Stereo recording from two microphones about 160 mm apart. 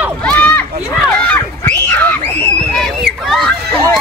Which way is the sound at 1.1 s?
10° left (ahead or behind).